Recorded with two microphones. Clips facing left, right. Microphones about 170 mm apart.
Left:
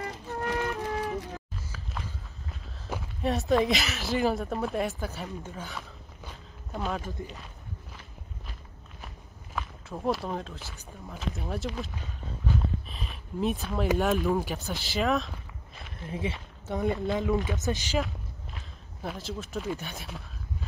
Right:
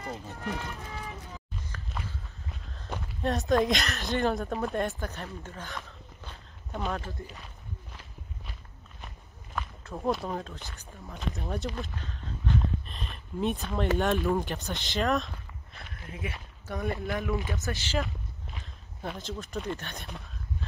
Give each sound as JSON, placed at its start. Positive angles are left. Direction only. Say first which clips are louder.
{"t": 0.3, "sound": "flute", "louder": "left 11 dB", "side_deg": 65}
{"t": 1.7, "sound": "walk", "louder": "even", "side_deg": 5}
{"t": 2.9, "sound": "speech", "louder": "left 1 dB", "side_deg": 0}
{"t": 7.2, "sound": "speech", "louder": "left 4 dB", "side_deg": 20}
{"t": 9.6, "sound": "speech", "louder": "even", "side_deg": 0}
{"t": 16.1, "sound": "speech", "louder": "left 6 dB", "side_deg": 25}
{"t": 18.6, "sound": "speech", "louder": "left 1 dB", "side_deg": 0}